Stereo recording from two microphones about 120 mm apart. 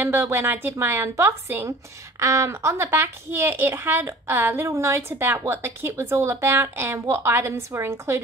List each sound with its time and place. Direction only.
0.0 s a woman's voice: 15° right (ahead or behind)